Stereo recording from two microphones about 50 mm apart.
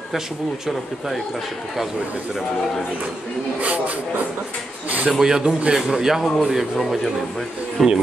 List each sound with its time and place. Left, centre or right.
0.7 s speech: centre
3.6 s speech: right
5.2 s speech: centre